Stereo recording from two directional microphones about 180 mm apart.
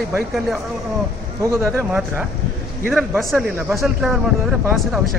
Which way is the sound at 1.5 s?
15° right (ahead or behind).